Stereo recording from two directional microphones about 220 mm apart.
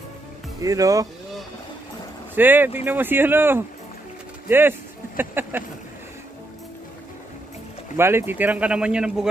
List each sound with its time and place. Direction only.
0.6 s speech: 15° right (ahead or behind)
2.3 s speech: 10° right (ahead or behind)
8.0 s speech: 10° right (ahead or behind)